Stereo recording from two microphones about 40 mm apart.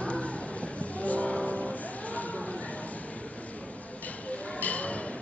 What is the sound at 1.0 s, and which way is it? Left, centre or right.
Vehicle, left.